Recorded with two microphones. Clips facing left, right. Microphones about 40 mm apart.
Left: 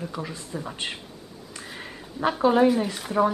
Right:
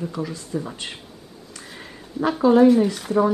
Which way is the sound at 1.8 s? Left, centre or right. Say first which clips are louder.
Right 2 dB; centre.